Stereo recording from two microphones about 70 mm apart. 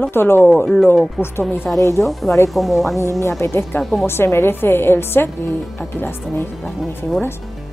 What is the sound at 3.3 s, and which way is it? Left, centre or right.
Speech, left.